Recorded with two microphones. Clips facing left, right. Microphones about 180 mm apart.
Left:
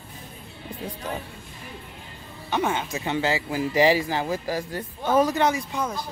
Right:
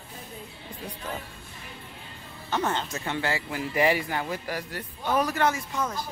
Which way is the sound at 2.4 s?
15° left (ahead or behind).